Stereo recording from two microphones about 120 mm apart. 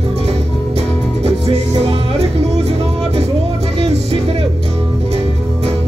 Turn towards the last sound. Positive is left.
turn(degrees=-65)  # may be behind; listen again after turning